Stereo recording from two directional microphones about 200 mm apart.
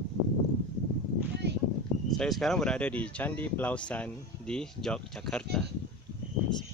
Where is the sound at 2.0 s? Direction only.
Centre (ahead or behind).